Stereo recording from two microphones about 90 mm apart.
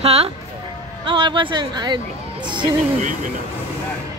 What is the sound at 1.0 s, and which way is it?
Speech, 65° right (ahead or behind).